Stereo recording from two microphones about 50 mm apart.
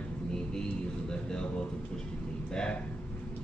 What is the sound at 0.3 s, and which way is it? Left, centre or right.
Vehicle, centre.